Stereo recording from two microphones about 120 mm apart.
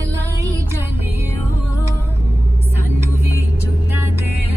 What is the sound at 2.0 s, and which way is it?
Music, 20° right (ahead or behind).